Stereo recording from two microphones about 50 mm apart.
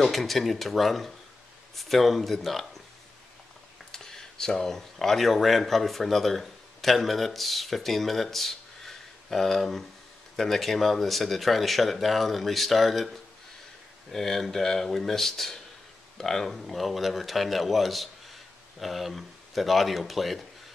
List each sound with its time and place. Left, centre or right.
0.0 s speech: centre
3.9 s speech: centre